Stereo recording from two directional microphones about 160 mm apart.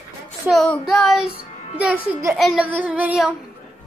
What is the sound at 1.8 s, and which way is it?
Female singing, 10° right (ahead or behind).